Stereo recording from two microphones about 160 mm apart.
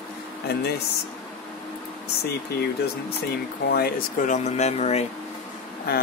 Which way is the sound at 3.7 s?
75° left (ahead or behind).